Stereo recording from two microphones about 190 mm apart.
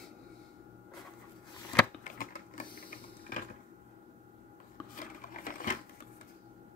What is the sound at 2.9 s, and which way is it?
Printer, 45° left (ahead or behind).